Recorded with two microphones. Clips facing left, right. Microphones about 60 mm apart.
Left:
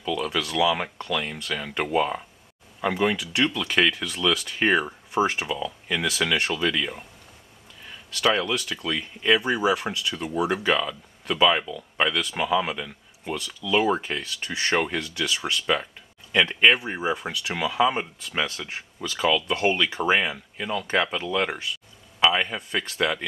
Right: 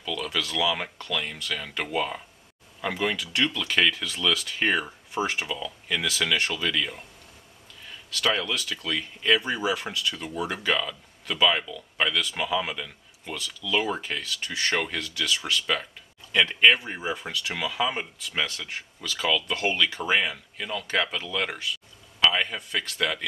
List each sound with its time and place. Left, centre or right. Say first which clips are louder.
0.0 s speech: left 4 dB; centre